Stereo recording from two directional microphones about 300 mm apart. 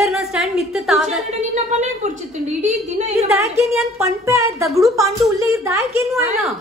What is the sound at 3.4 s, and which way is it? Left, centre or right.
A woman's voice, centre.